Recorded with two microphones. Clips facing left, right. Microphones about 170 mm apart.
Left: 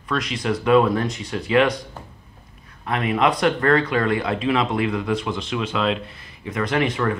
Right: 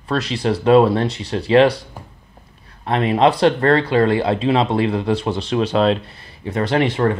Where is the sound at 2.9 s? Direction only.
30° right (ahead or behind).